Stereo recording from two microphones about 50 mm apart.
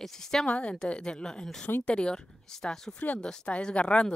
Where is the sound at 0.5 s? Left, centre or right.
Left.